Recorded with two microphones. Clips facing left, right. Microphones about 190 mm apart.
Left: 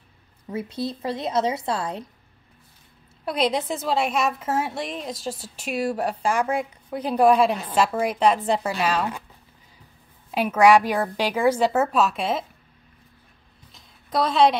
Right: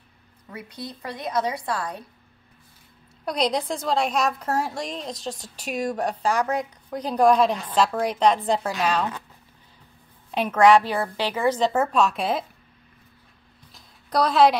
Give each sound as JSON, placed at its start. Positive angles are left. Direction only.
{"t": 0.5, "sound": "a woman's voice", "side_deg": 25}
{"t": 3.3, "sound": "a woman's voice", "side_deg": 5}
{"t": 10.3, "sound": "a woman's voice", "side_deg": 5}
{"t": 13.7, "sound": "music", "side_deg": 0}